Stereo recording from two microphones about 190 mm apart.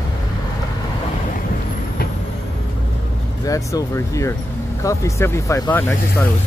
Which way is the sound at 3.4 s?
15° left (ahead or behind).